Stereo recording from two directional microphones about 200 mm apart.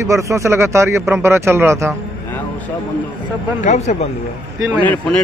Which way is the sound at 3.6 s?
35° left (ahead or behind).